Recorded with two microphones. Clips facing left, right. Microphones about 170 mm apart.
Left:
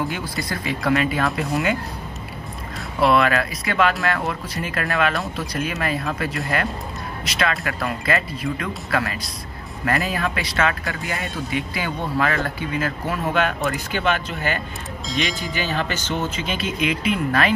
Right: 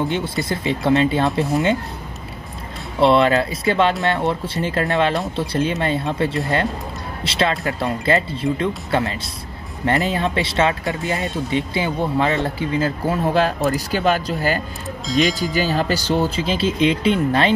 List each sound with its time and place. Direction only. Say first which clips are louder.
0.1 s speech: right 5 dB; 25° right (ahead or behind)
3.0 s speech: right 3 dB; 25° right (ahead or behind)
15.0 s speech: right 7 dB; centre (ahead or behind)
15.5 s speech: right 5 dB; 35° right (ahead or behind)